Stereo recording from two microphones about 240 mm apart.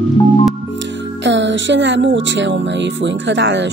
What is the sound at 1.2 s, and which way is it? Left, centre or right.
Speech, right.